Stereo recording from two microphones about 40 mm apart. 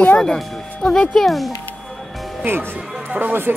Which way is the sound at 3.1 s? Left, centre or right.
Right.